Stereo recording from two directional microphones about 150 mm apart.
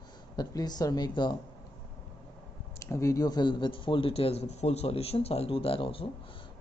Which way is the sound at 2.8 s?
20° left (ahead or behind).